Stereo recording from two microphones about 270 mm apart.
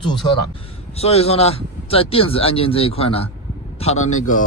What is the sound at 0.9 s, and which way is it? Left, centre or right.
Speech, left.